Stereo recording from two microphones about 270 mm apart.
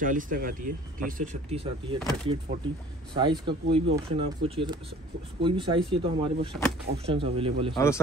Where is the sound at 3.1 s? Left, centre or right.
Centre.